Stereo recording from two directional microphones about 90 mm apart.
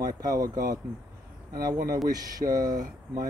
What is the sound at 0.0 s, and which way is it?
Speech, 40° right (ahead or behind).